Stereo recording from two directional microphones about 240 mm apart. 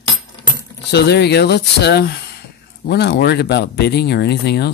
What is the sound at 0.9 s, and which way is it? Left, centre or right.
Speech, left.